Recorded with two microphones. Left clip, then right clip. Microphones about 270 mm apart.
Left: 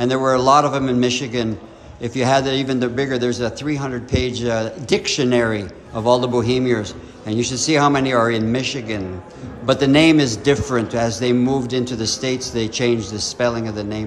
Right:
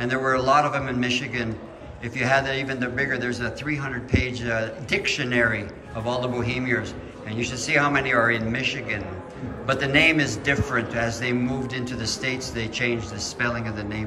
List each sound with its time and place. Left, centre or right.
0.0 s a man's voice: centre